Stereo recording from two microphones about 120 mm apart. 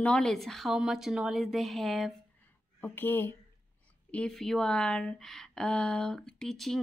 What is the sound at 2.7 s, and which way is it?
A woman's voice, 15° left (ahead or behind).